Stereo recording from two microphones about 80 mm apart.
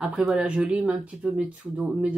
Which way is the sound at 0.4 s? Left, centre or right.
Centre.